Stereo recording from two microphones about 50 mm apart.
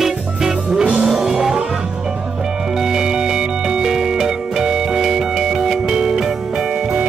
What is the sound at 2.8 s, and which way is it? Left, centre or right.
Music, centre.